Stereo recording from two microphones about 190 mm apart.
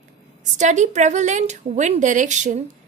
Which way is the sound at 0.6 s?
40° right (ahead or behind).